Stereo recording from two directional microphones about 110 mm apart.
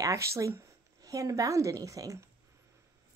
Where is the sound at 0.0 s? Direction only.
25° right (ahead or behind).